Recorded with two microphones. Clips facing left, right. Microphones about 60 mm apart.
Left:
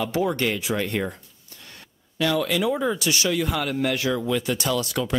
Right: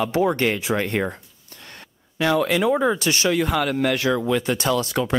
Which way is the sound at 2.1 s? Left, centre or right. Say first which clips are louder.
Right 3 dB; right.